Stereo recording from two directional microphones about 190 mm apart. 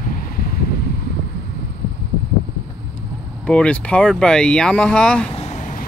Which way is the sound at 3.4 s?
5° left (ahead or behind).